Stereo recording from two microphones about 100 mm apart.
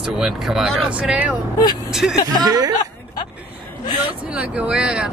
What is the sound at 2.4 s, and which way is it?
Speech, 40° right (ahead or behind).